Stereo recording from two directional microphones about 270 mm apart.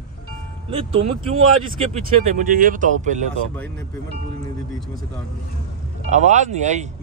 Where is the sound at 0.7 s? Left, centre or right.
Centre.